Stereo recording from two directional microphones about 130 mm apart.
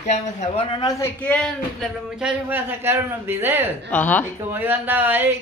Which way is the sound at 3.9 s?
15° left (ahead or behind).